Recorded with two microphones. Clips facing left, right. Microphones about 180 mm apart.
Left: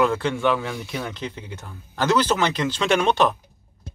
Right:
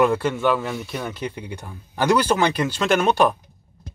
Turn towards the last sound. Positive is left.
turn(degrees=-10)  # may be behind; listen again after turning